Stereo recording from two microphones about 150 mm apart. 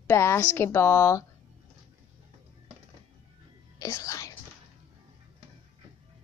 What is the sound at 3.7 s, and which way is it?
Whispering, 20° left (ahead or behind).